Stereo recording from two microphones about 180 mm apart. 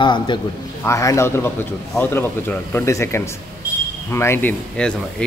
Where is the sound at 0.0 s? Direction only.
25° left (ahead or behind).